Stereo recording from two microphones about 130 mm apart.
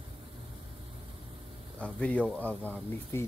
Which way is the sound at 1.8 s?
10° left (ahead or behind).